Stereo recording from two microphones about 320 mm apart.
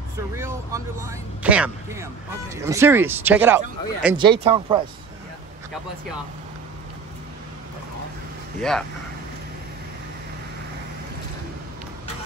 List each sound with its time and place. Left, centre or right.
0.4 s speech: centre
4.4 s speech: centre
8.5 s speech: centre